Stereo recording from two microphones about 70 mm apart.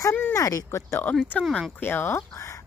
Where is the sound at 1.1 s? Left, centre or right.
Left.